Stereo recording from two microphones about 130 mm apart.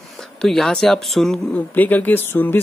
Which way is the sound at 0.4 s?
5° left (ahead or behind).